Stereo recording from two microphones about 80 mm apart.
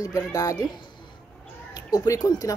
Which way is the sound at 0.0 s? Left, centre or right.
Left.